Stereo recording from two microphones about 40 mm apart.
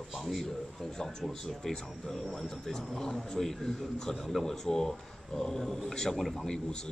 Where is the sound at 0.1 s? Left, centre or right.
Centre.